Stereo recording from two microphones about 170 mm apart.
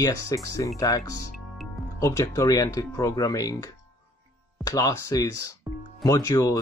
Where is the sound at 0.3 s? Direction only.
20° left (ahead or behind).